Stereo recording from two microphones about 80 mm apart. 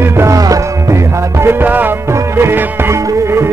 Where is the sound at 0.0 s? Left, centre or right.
Right.